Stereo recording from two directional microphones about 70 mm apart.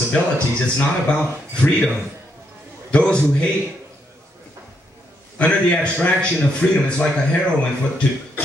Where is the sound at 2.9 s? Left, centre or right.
Centre.